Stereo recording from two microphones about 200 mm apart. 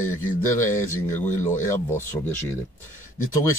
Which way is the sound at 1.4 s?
40° left (ahead or behind).